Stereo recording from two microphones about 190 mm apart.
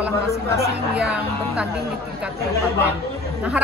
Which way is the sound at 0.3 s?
15° left (ahead or behind).